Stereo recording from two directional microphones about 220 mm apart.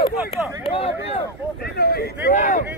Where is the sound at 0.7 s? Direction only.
25° left (ahead or behind).